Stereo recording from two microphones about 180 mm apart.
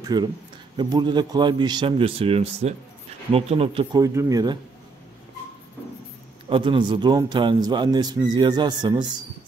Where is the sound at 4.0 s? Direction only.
20° right (ahead or behind).